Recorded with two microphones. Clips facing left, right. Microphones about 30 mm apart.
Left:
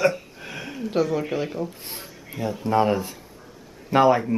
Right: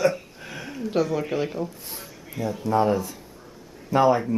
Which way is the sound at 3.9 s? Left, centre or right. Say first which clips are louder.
Left 2 dB; left.